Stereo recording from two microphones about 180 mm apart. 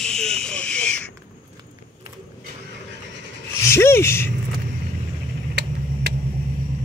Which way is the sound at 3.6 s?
15° left (ahead or behind).